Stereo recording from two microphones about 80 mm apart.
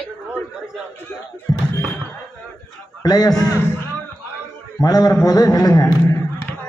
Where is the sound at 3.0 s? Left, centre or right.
Left.